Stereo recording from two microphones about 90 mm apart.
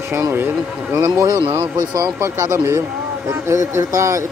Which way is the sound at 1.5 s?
35° right (ahead or behind).